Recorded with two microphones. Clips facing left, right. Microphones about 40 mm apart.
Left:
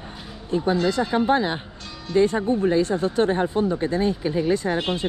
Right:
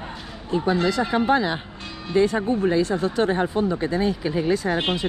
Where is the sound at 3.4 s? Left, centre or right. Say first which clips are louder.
Even; right.